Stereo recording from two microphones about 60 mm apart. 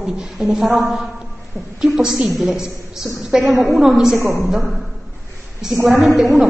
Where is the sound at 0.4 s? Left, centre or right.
Centre.